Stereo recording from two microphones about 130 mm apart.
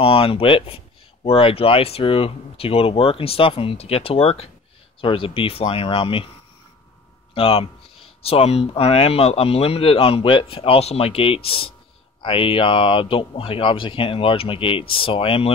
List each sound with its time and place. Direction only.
0.0 s speech: 45° left (ahead or behind)
7.3 s speech: 45° left (ahead or behind)